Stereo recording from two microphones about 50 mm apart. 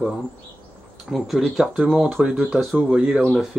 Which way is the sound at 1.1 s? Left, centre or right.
Centre.